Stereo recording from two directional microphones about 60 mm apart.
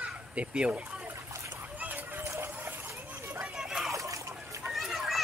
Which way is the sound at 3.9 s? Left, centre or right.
Right.